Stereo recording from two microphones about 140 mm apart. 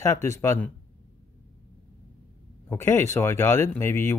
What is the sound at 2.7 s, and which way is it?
Speech, 15° left (ahead or behind).